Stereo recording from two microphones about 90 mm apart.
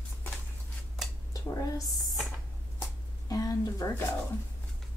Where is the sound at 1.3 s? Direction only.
40° left (ahead or behind).